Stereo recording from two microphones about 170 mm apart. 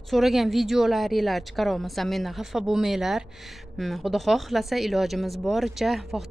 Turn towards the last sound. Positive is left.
turn(degrees=0)  # may be behind; listen again after turning